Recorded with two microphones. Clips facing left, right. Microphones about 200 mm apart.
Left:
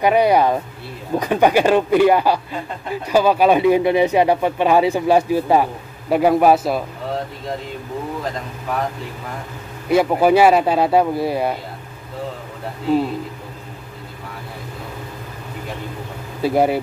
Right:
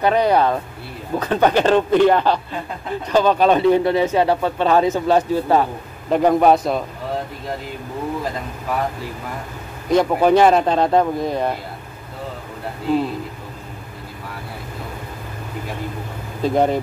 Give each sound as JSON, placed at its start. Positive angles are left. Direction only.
{"t": 0.0, "sound": "speech", "side_deg": 10}
{"t": 9.8, "sound": "speech", "side_deg": 5}
{"t": 16.4, "sound": "speech", "side_deg": 10}